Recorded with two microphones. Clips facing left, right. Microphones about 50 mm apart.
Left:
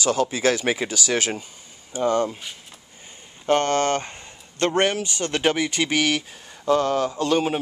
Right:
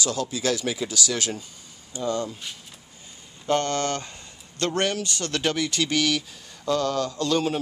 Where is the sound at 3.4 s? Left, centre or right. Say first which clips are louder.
Left 4 dB; left.